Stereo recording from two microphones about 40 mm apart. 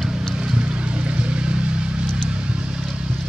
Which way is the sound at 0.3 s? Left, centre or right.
Right.